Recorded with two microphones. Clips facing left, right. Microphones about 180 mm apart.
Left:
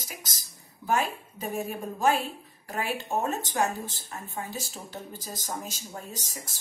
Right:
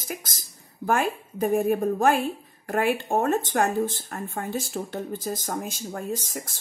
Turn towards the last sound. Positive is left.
turn(degrees=-55)  # may be behind; listen again after turning